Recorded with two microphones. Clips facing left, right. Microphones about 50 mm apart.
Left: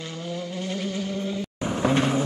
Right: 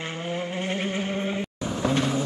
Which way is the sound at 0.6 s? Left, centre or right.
Right.